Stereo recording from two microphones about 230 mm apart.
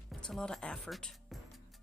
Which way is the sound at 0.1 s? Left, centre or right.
Centre.